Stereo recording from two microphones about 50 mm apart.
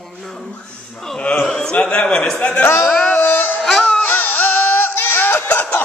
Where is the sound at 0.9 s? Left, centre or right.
Centre.